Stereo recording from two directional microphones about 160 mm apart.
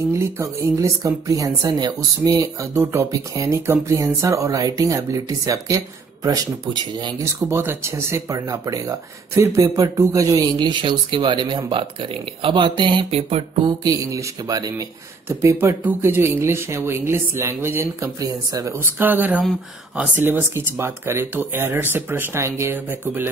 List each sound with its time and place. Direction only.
0.1 s speech: 20° right (ahead or behind)
7.3 s speech: 15° right (ahead or behind); by 13.4 s 35° right (ahead or behind)
13.7 s speech: 20° right (ahead or behind)